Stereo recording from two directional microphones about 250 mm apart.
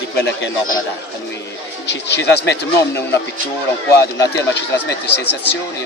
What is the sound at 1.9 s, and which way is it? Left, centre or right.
Speech, left.